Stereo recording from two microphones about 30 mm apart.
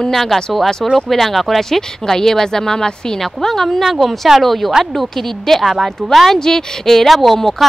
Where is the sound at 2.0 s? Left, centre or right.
Centre.